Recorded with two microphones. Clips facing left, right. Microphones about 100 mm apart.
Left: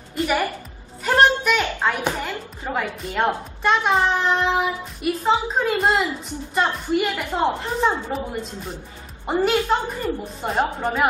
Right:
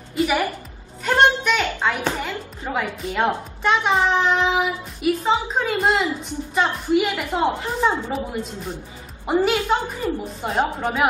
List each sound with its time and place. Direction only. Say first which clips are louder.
0.1 s music: right 1 dB; 5° right (ahead or behind)
1.0 s a sound: even; centre (ahead or behind)
2.7 s a woman's voice: right 1 dB; centre (ahead or behind)